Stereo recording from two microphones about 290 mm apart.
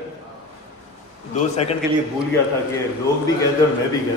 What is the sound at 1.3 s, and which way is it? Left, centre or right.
Speech, left.